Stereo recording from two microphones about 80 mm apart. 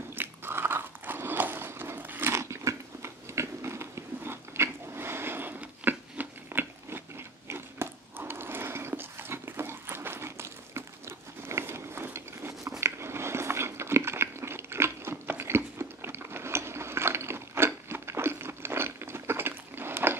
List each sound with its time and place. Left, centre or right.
0.1 s biting: right